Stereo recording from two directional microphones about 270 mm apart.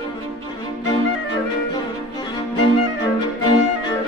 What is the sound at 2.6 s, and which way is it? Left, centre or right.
Music, centre.